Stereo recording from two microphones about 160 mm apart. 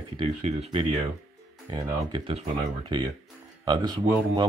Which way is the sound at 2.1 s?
35° right (ahead or behind).